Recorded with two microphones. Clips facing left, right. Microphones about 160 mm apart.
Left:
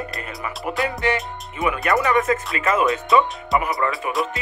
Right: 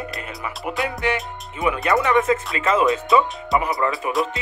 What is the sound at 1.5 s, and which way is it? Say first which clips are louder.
Speech: right 1 dB; 20° right (ahead or behind).